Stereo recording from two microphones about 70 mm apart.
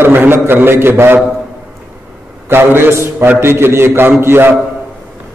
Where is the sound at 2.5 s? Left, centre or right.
Right.